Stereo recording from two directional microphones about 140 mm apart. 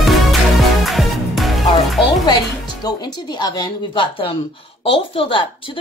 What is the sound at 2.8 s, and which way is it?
Speech, 30° left (ahead or behind).